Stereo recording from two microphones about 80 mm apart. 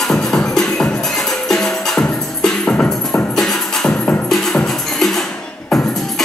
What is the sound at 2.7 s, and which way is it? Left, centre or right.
Music, left.